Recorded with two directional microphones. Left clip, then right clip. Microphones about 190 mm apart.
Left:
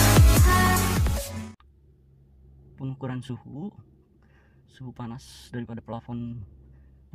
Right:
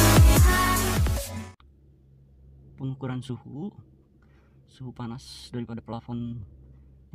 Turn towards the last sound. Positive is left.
turn(degrees=0)  # may be behind; listen again after turning